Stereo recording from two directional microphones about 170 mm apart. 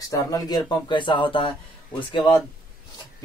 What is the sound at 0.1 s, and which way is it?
Speech, 20° left (ahead or behind).